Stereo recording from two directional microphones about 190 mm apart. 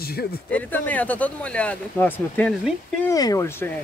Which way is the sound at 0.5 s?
10° left (ahead or behind).